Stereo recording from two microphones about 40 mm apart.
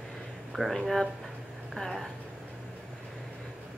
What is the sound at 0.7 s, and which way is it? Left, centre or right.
Speech, centre.